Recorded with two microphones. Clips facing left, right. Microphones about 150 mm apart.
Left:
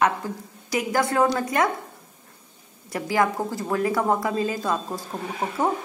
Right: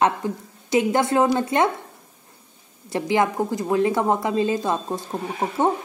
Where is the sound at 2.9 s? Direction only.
25° right (ahead or behind).